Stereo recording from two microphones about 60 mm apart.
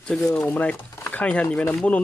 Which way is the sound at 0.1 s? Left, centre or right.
Centre.